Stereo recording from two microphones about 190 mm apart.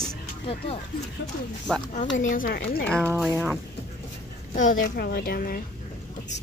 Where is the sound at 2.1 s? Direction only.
45° left (ahead or behind).